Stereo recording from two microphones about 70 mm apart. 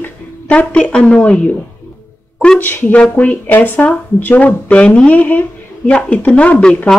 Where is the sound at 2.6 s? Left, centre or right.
Left.